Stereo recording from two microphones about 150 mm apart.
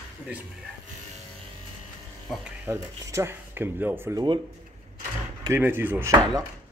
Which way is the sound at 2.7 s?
20° right (ahead or behind).